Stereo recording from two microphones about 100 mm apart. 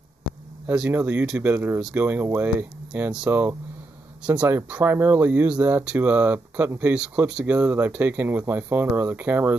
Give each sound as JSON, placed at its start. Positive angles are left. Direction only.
{"t": 0.8, "sound": "speech", "side_deg": -20}